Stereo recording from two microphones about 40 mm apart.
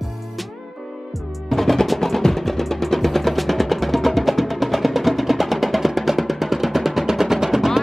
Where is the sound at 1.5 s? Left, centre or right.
Centre.